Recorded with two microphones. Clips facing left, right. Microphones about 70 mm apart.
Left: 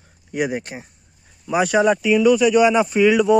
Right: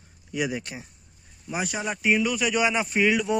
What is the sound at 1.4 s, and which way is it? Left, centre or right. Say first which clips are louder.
Speech: left 13 dB; left.